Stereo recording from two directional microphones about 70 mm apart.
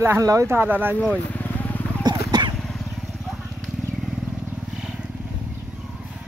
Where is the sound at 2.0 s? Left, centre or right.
Right.